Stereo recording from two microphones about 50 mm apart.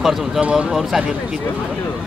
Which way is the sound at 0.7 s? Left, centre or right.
Centre.